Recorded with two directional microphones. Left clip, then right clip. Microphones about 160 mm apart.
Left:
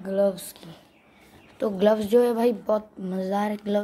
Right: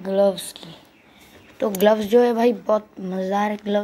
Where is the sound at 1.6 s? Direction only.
10° left (ahead or behind).